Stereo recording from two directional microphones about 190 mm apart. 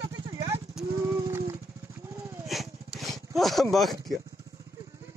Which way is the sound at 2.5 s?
Centre (ahead or behind).